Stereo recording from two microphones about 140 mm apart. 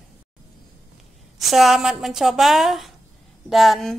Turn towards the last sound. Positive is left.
turn(degrees=0)  # may be behind; listen again after turning